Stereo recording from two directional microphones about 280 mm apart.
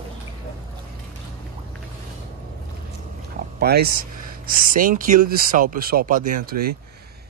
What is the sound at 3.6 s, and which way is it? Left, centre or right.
Speech, right.